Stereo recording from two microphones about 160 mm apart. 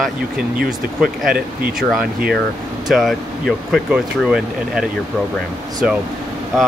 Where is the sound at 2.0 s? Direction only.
70° right (ahead or behind).